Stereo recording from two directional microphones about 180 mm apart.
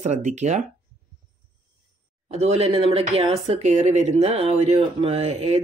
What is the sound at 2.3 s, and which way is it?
Speech, 35° right (ahead or behind).